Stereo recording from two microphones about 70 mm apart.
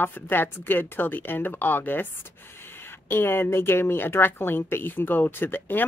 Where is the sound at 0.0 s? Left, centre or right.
Left.